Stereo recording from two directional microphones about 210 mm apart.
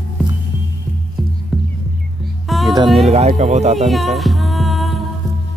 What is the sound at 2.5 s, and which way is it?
Music, centre (ahead or behind).